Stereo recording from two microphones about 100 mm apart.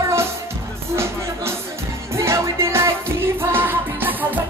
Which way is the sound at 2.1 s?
25° right (ahead or behind).